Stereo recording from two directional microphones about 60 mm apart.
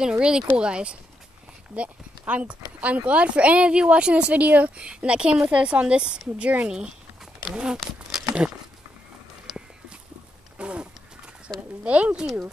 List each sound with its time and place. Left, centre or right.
0.0 s speech: centre
10.6 s a sound: centre
11.5 s speech: right
11.8 s speech: right